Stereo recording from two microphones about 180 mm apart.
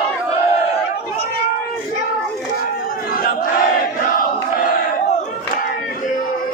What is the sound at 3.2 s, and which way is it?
Battle cry, 50° left (ahead or behind).